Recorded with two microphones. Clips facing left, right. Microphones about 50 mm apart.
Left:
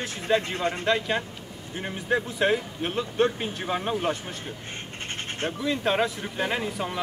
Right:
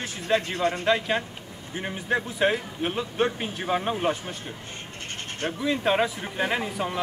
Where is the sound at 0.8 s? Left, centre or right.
Centre.